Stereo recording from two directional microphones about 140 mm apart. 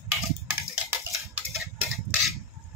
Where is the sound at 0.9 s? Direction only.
15° right (ahead or behind).